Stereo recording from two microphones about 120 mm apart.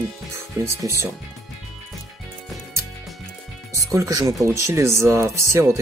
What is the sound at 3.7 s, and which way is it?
Speech, 30° right (ahead or behind).